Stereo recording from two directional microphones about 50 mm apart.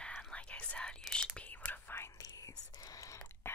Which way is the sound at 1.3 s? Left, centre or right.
Left.